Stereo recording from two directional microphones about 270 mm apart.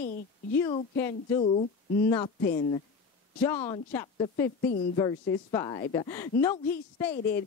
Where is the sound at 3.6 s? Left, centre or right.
Centre.